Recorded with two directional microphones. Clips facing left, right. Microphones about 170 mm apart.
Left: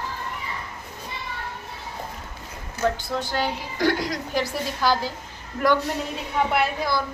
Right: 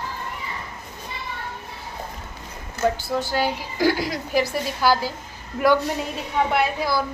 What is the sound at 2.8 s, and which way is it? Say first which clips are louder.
A woman's voice: right 2 dB; 5° right (ahead or behind).